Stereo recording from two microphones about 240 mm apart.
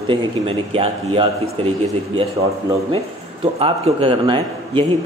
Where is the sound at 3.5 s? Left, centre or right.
Right.